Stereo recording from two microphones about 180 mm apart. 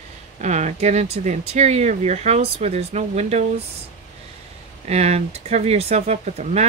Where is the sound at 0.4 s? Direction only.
40° right (ahead or behind).